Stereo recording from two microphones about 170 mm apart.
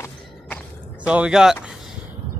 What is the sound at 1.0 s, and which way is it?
Speech, 5° right (ahead or behind).